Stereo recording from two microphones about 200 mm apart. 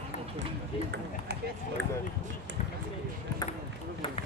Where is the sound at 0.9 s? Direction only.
55° right (ahead or behind).